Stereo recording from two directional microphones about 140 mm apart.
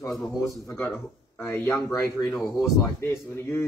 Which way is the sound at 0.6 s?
15° left (ahead or behind).